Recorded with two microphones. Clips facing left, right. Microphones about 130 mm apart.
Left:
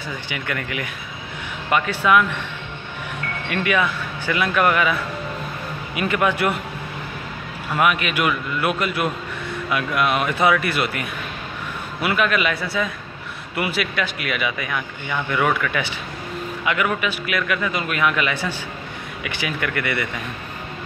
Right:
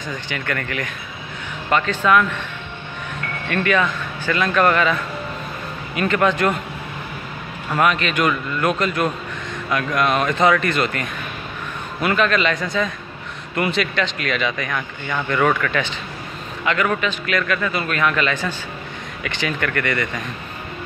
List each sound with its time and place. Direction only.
0.1 s a man's voice: 10° left (ahead or behind)
3.4 s a man's voice: 15° left (ahead or behind)
7.7 s a man's voice: 10° left (ahead or behind)